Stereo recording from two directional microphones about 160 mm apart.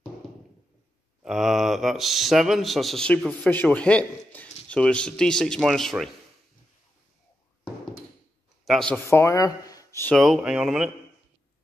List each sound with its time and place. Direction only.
1.2 s a man's voice: centre (ahead or behind)
8.6 s speech: 5° left (ahead or behind)
9.1 s speech: 20° left (ahead or behind)
10.1 s a man's voice: centre (ahead or behind)